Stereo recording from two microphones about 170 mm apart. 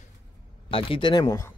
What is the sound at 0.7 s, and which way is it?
Speech, 30° left (ahead or behind).